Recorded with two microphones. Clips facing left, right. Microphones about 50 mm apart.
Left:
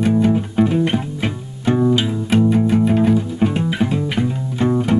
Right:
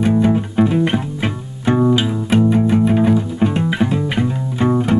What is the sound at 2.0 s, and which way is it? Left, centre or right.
Music, centre.